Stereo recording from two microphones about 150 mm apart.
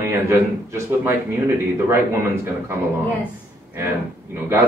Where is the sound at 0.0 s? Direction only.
15° right (ahead or behind).